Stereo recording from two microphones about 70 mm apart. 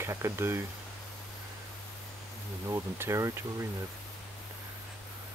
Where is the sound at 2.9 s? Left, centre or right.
Right.